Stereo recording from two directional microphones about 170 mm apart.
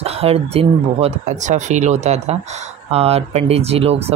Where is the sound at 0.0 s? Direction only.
35° right (ahead or behind).